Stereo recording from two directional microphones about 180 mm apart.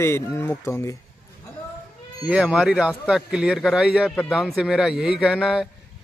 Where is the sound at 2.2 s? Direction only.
5° right (ahead or behind).